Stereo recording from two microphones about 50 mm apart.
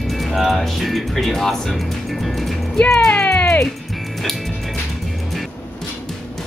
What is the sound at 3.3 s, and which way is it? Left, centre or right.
Music, left.